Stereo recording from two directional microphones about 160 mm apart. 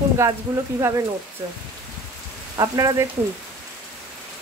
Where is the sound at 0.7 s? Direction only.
20° right (ahead or behind).